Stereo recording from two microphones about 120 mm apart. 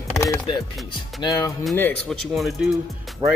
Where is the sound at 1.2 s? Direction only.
30° left (ahead or behind).